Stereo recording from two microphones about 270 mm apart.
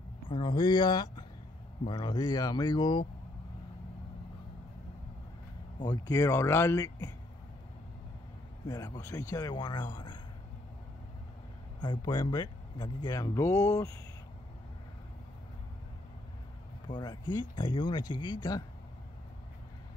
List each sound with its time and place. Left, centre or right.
0.3 s speech: centre
5.8 s speech: centre
8.6 s a man's voice: centre
11.8 s speech: centre
16.8 s speech: centre